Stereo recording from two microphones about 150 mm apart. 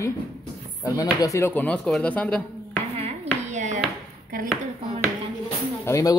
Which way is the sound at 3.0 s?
50° right (ahead or behind).